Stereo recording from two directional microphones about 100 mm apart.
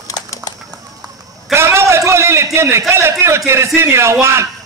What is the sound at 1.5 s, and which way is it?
A man's voice, 25° right (ahead or behind).